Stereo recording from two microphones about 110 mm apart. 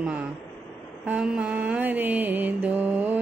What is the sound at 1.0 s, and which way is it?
Mantra, 10° right (ahead or behind).